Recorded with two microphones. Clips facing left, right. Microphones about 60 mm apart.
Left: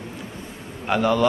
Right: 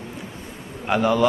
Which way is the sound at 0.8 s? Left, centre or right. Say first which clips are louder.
Even; centre.